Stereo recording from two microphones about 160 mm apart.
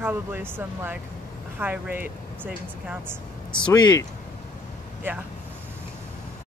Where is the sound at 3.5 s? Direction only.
25° left (ahead or behind).